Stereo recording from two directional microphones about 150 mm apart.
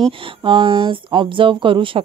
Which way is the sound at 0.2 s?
35° right (ahead or behind).